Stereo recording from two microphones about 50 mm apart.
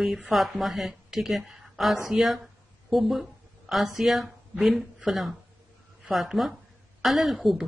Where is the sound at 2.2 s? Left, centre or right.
Centre.